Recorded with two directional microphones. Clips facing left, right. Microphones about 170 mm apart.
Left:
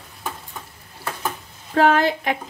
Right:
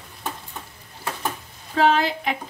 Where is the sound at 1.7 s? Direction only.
55° left (ahead or behind).